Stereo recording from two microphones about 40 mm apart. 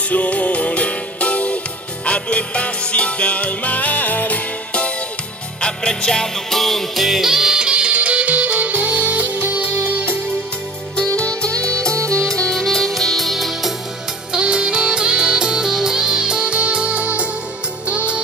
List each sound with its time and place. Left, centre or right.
0.1 s music: left
5.6 s music: left; by 7.1 s centre
7.1 s music: centre
7.5 s music: right
9.3 s music: right
11.0 s music: left; by 13.7 s centre
14.3 s music: right